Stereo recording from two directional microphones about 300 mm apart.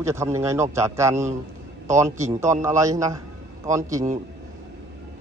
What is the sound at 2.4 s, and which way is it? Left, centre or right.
A man's voice, centre.